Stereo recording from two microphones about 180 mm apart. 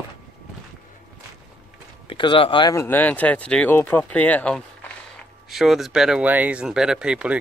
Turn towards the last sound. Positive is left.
turn(degrees=-5)  # may be behind; listen again after turning